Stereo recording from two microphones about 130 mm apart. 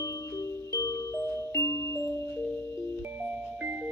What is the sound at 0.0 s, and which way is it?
Music, 25° left (ahead or behind).